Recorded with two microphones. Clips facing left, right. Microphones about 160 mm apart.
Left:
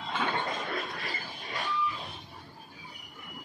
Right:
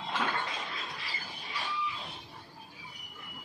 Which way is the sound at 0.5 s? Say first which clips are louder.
Left 6 dB; 50° left (ahead or behind).